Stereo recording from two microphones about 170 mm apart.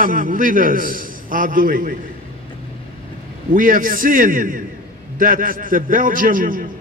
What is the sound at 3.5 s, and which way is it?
A man's voice, 55° right (ahead or behind).